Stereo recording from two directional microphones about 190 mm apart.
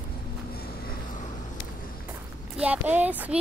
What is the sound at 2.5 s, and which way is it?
Speech, 10° right (ahead or behind).